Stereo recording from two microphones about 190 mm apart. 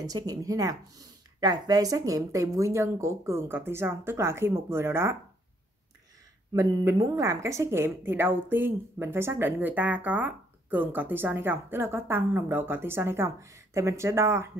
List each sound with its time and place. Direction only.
0.0 s speech: 20° right (ahead or behind)
6.5 s speech: 15° right (ahead or behind)